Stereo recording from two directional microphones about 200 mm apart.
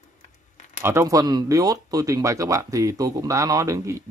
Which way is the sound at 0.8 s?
15° right (ahead or behind).